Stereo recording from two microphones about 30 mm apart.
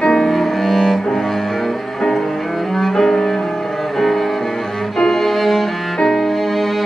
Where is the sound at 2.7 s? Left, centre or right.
Centre.